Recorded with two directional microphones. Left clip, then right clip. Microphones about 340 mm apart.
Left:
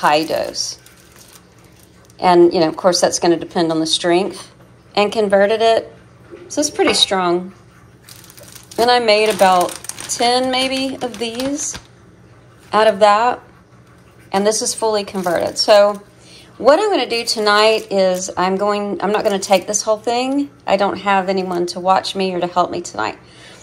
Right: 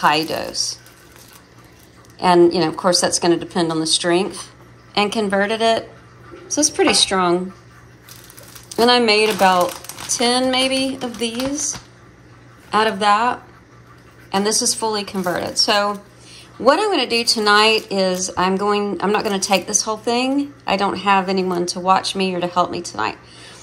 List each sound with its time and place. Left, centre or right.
0.0 s a woman's voice: centre
2.1 s a woman's voice: centre
8.6 s a woman's voice: centre